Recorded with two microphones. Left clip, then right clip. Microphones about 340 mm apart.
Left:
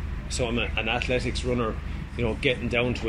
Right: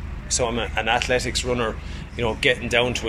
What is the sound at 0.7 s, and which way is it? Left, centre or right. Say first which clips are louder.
Speech: right 5 dB; right.